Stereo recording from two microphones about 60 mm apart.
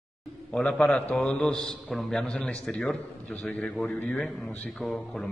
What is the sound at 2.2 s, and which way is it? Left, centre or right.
Speech, centre.